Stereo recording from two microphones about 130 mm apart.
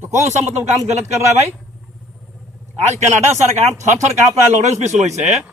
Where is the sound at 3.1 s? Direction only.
65° right (ahead or behind).